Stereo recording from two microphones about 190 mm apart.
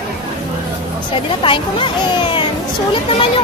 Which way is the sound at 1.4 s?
25° left (ahead or behind).